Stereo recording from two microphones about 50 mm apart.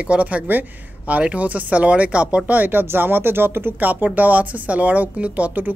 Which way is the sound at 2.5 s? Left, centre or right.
Right.